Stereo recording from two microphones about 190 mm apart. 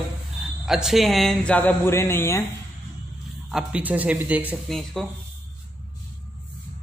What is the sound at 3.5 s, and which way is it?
Speech, 5° right (ahead or behind).